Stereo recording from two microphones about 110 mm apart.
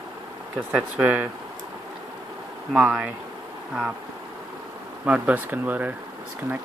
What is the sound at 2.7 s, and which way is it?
Speech, 10° right (ahead or behind).